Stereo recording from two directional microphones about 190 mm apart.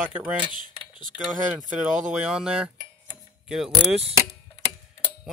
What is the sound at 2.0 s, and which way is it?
Speech, 5° right (ahead or behind).